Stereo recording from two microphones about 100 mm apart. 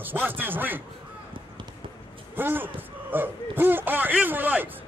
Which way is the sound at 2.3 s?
20° right (ahead or behind).